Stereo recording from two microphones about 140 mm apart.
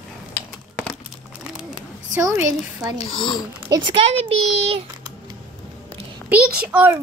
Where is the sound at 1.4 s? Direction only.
5° right (ahead or behind).